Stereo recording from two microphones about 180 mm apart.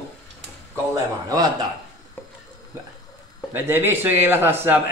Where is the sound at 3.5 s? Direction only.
10° right (ahead or behind).